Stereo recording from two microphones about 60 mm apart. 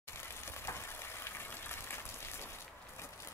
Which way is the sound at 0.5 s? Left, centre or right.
Left.